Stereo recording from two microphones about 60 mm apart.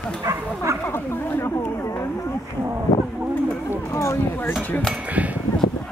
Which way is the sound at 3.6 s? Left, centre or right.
Left.